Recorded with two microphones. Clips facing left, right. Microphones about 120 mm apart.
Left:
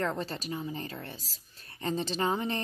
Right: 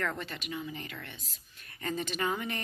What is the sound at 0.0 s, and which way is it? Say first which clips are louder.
A woman's voice: left 4 dB; 30° left (ahead or behind).